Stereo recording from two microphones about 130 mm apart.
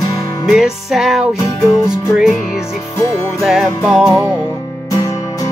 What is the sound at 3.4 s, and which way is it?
Music, 5° right (ahead or behind).